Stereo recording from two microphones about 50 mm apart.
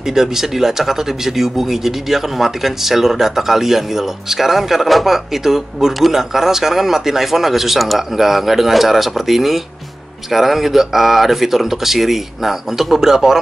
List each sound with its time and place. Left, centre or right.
0.0 s speech: centre